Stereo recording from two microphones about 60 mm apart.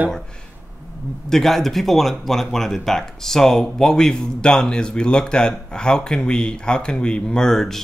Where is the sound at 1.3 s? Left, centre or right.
Centre.